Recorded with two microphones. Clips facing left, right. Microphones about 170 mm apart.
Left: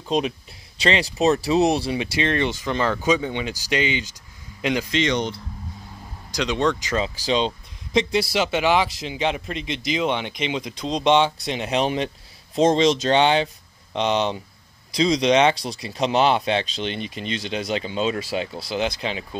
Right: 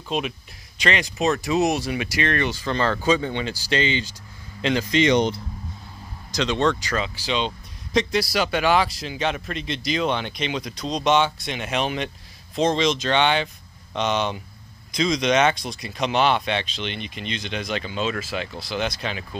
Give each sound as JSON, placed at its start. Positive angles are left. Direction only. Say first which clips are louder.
{"t": 0.1, "sound": "speech", "louder": "left 4 dB", "side_deg": 35}
{"t": 4.9, "sound": "speech", "louder": "right 7 dB", "side_deg": -10}
{"t": 6.3, "sound": "speech", "louder": "even", "side_deg": 10}
{"t": 7.0, "sound": "speech", "louder": "left 3 dB", "side_deg": 35}